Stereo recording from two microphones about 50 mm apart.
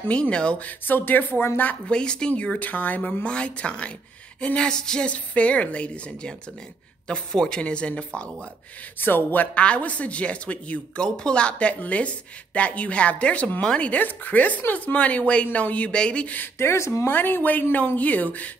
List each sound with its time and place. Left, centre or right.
0.1 s speech: left
0.7 s speech: left
1.9 s a sound: centre
2.6 s speech: left
4.4 s a sound: centre
5.1 s speech: left
9.0 s speech: left
9.6 s speech: left
16.5 s speech: left
17.1 s speech: left
17.9 s speech: left